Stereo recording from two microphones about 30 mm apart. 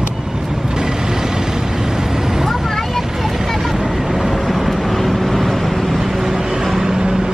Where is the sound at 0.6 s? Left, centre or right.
Right.